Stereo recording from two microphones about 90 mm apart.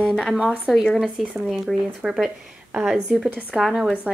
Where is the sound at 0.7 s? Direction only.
5° left (ahead or behind).